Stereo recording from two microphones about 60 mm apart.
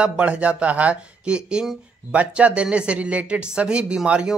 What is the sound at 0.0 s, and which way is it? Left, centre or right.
Speech, centre.